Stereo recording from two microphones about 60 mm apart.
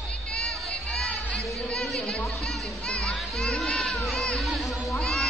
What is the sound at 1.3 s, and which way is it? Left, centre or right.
Music, centre.